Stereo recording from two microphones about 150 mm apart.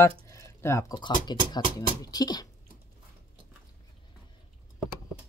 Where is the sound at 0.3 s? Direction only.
20° left (ahead or behind).